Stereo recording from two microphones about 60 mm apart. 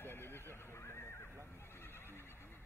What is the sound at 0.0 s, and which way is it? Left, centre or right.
Neigh, left.